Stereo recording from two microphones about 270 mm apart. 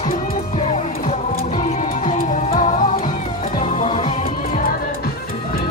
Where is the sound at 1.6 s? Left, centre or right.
Left.